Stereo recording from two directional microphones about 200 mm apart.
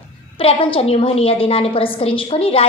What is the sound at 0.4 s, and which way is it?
A woman's voice, 25° left (ahead or behind).